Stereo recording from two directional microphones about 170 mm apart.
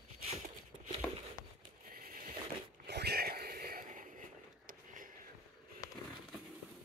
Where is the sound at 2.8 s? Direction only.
75° right (ahead or behind).